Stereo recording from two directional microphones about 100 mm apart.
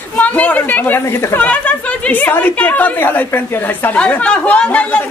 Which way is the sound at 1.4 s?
15° left (ahead or behind).